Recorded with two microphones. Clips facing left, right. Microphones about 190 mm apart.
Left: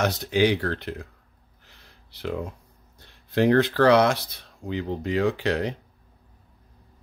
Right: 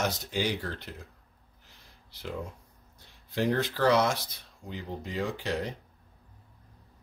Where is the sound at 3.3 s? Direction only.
70° left (ahead or behind).